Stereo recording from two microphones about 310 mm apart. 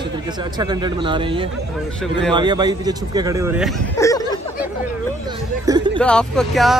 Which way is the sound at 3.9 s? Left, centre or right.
Centre.